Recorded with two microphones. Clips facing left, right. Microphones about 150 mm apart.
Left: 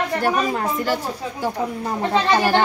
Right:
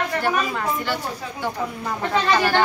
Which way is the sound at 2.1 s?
25° left (ahead or behind).